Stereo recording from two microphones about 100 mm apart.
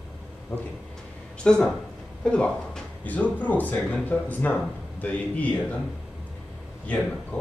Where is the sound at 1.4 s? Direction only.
10° left (ahead or behind).